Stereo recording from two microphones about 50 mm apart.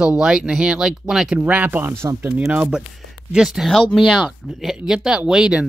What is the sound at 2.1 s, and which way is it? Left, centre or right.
Speech, right.